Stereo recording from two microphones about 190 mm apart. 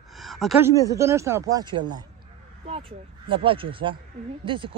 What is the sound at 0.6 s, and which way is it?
Speech, 15° right (ahead or behind).